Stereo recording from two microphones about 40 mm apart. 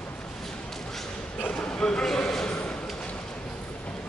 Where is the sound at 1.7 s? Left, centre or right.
Left.